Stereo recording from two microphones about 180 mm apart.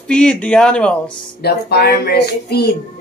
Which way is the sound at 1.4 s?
60° left (ahead or behind).